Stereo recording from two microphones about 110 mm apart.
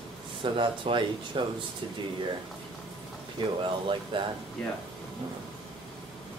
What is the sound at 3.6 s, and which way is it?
Speech, 50° right (ahead or behind).